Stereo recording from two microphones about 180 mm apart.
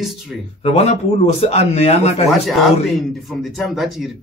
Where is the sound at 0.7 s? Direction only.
35° left (ahead or behind).